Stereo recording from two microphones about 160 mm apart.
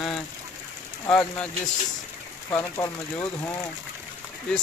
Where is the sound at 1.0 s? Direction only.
10° left (ahead or behind).